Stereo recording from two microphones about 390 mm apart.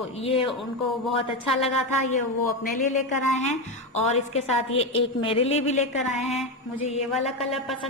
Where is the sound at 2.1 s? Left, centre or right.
Centre.